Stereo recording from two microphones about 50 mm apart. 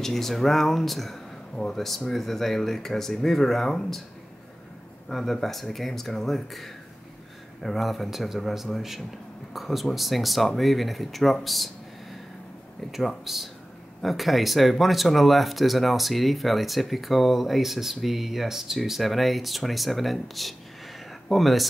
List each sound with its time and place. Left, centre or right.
0.0 s speech: centre
5.0 s speech: centre
12.9 s speech: centre